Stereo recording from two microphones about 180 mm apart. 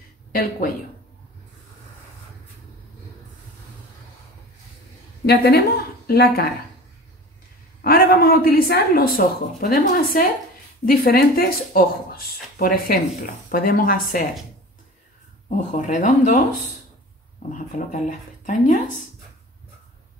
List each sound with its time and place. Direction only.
0.3 s speech: 55° left (ahead or behind)
5.2 s speech: 60° left (ahead or behind)
7.8 s speech: 55° left (ahead or behind)
15.4 s speech: 40° left (ahead or behind)
17.5 s speech: 45° left (ahead or behind)